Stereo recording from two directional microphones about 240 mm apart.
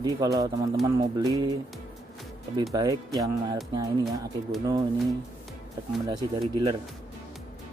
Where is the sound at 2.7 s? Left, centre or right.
Centre.